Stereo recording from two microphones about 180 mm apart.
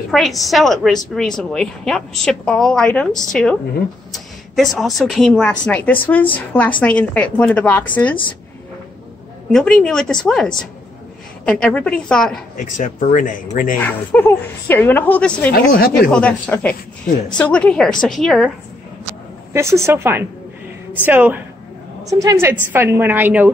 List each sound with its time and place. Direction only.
0.1 s a woman's voice: centre (ahead or behind)
4.7 s a woman's voice: centre (ahead or behind)
9.5 s a woman's voice: centre (ahead or behind)
12.5 s speech: 45° left (ahead or behind)
13.7 s a woman's voice: 10° left (ahead or behind)
15.5 s speech: 55° left (ahead or behind)
16.1 s a woman's voice: 5° left (ahead or behind)
19.5 s a woman's voice: 15° right (ahead or behind)